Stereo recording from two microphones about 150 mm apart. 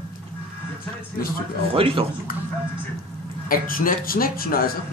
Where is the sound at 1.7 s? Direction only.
35° right (ahead or behind).